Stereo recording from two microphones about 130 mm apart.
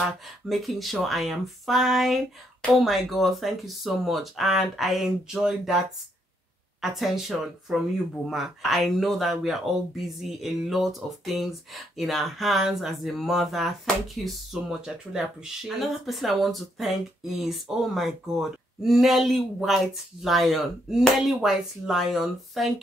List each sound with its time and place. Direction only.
0.5 s speech: centre (ahead or behind)
7.0 s speech: centre (ahead or behind)